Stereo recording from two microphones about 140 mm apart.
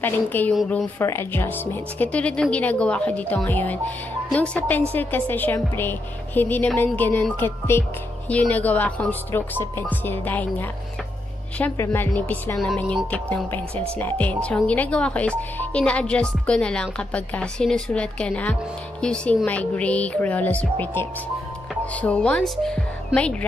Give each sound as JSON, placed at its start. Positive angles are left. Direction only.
{"t": 0.0, "sound": "a woman's voice", "side_deg": 15}
{"t": 11.7, "sound": "a woman's voice", "side_deg": 20}